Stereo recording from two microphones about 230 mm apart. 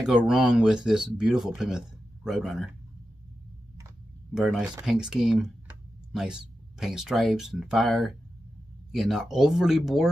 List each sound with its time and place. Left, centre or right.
0.0 s speech: centre
4.3 s speech: centre